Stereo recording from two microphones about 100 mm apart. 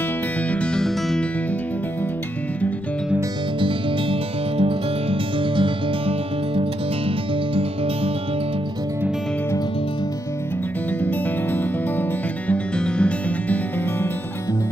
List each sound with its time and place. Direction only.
0.4 s music: 15° left (ahead or behind)
3.5 s music: 60° right (ahead or behind)
11.0 s music: 15° left (ahead or behind)